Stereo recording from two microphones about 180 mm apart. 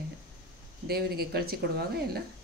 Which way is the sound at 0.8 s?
60° right (ahead or behind).